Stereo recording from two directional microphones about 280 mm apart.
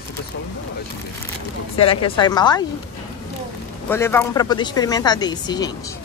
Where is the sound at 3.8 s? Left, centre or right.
Centre.